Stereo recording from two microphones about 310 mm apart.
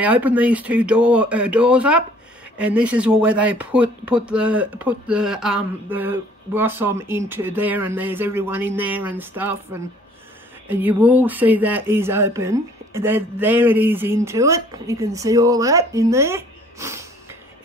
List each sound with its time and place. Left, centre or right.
0.0 s speech: centre